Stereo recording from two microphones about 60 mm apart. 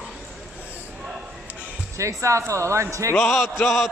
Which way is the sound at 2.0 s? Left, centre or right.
Right.